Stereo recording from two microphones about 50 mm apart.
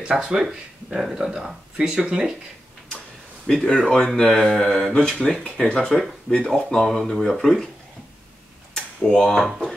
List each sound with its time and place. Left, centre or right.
0.0 s speech: centre
3.4 s speech: centre
6.8 s speech: centre
8.7 s tick-tock: centre